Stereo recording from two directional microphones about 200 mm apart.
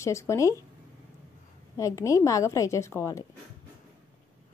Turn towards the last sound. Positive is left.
turn(degrees=15)  # may be behind; listen again after turning